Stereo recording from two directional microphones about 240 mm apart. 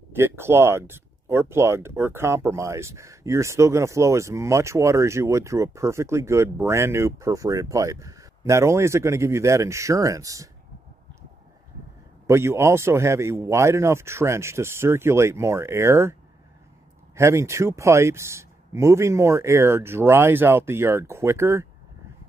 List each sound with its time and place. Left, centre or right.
0.1 s speech: centre
12.3 s speech: centre